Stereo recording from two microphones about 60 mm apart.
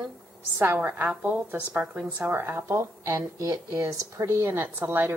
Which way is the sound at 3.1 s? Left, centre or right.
Right.